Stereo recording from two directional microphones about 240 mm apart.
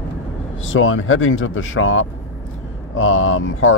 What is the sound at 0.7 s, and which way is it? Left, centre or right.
Speech, left.